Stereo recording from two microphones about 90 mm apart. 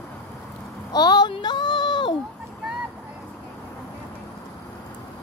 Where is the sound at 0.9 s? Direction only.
50° left (ahead or behind).